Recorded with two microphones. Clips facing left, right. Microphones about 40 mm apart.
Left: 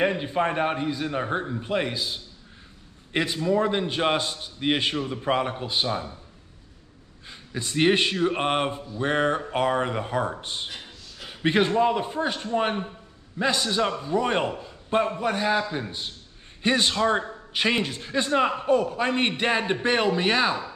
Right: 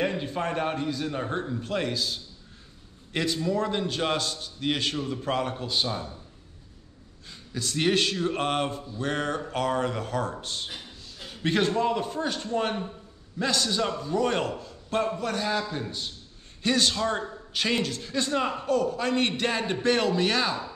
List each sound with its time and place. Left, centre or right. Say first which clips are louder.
0.0 s a man's voice: left 4 dB; left
7.2 s a man's voice: left 1 dB; left